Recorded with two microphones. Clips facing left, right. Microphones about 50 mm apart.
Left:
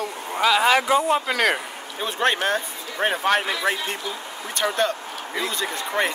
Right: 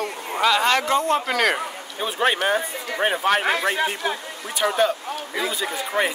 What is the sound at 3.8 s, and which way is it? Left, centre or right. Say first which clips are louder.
Speech: right 6 dB; right.